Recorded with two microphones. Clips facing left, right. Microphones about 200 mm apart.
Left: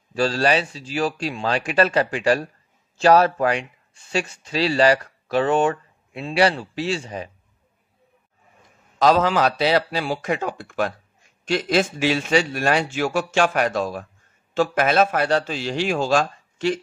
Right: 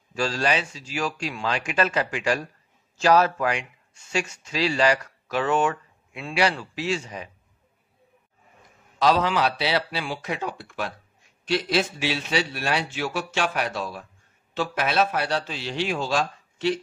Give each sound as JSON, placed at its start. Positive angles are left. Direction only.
{"t": 0.1, "sound": "speech", "side_deg": 35}
{"t": 9.0, "sound": "a man's voice", "side_deg": 45}